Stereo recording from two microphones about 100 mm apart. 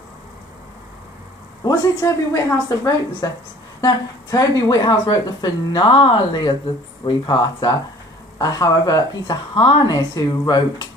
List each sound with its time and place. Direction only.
1.6 s a woman's voice: 35° left (ahead or behind)
8.4 s a woman's voice: 35° left (ahead or behind)
9.6 s a woman's voice: 55° left (ahead or behind)